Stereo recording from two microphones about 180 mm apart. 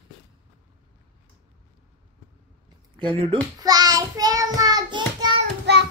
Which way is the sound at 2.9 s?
25° right (ahead or behind).